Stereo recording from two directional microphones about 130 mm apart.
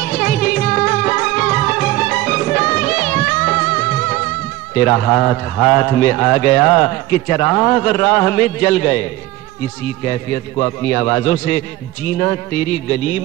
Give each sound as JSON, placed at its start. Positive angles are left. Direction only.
{"t": 0.0, "sound": "music", "side_deg": 10}
{"t": 4.7, "sound": "a man's voice", "side_deg": 15}
{"t": 10.6, "sound": "a man's voice", "side_deg": 20}